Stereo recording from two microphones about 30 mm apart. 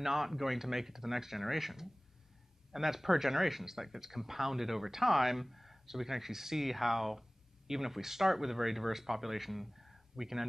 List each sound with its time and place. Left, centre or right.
0.0 s speech: centre